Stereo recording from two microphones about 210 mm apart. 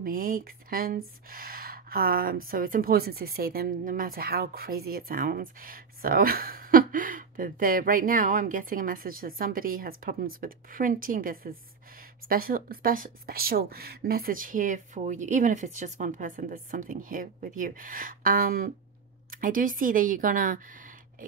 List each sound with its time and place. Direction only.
0.0 s a woman's voice: 45° right (ahead or behind)